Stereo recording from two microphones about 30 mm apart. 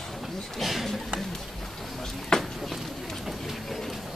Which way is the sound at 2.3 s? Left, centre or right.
Left.